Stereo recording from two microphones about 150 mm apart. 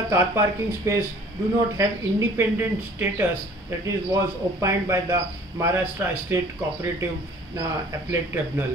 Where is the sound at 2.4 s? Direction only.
15° right (ahead or behind).